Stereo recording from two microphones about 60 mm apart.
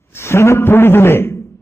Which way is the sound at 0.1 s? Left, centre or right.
Left.